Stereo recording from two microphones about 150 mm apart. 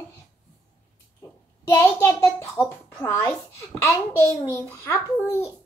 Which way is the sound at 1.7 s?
20° left (ahead or behind).